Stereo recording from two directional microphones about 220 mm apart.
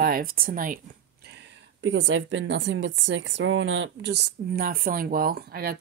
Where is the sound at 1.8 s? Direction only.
60° right (ahead or behind).